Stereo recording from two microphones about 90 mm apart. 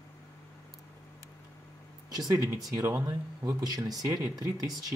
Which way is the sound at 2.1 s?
45° right (ahead or behind).